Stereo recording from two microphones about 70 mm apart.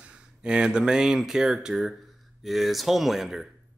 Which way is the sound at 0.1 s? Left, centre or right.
Centre.